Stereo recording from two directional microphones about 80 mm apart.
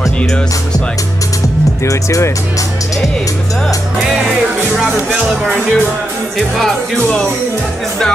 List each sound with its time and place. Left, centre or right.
1.9 s speech: left
4.3 s speech: centre